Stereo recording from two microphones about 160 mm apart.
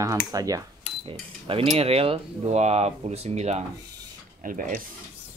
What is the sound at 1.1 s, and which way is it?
Cutlery, 35° right (ahead or behind).